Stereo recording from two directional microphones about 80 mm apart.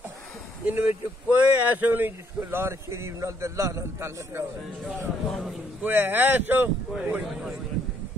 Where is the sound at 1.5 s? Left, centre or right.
Right.